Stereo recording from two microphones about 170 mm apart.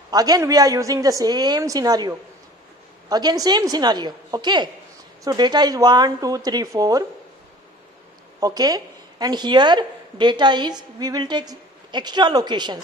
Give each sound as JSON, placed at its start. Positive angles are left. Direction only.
{"t": 0.1, "sound": "a woman's voice", "side_deg": -20}
{"t": 8.4, "sound": "a woman's voice", "side_deg": -20}